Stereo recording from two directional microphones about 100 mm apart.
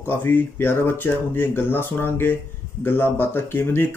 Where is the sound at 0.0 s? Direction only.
20° left (ahead or behind).